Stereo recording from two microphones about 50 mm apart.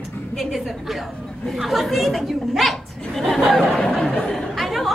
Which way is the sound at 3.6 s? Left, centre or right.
Centre.